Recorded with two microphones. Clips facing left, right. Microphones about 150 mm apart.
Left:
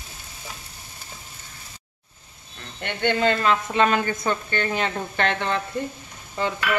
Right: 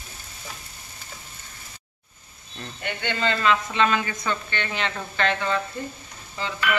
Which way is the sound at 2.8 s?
55° left (ahead or behind).